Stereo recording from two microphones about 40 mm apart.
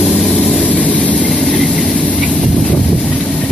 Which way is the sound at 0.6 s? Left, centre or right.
Left.